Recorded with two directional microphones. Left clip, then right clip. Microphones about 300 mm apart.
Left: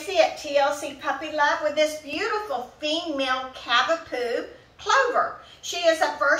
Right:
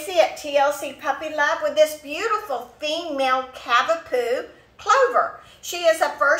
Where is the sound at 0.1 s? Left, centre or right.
Centre.